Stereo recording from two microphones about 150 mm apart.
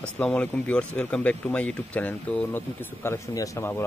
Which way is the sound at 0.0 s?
10° left (ahead or behind).